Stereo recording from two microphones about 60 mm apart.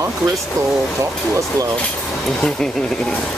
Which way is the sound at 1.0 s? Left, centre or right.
Right.